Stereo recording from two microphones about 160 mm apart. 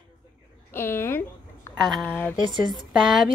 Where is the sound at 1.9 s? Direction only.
Centre (ahead or behind).